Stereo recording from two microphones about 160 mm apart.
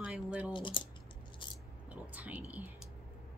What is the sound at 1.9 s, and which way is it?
Whispering, 10° right (ahead or behind).